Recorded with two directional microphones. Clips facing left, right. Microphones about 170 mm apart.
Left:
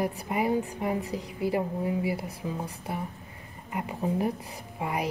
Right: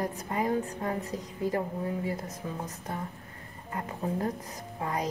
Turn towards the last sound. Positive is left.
turn(degrees=10)  # may be behind; listen again after turning